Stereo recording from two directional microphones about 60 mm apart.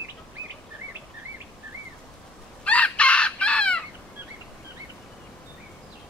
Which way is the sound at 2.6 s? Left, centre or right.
Left.